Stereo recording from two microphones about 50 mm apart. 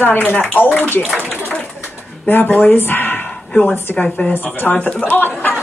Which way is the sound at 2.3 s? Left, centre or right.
Left.